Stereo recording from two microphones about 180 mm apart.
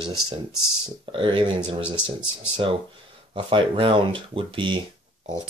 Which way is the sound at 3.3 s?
30° right (ahead or behind).